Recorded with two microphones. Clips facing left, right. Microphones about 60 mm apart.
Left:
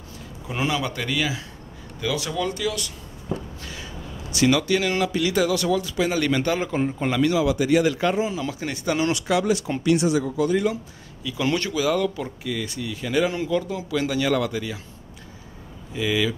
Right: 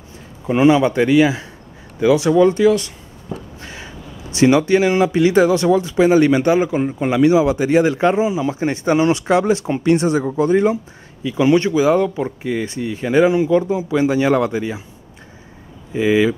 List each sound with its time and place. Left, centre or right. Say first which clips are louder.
0.5 s speech: right 13 dB; right
3.3 s a sound: even; centre
3.6 s speech: right 3 dB; right
15.9 s speech: right 9 dB; right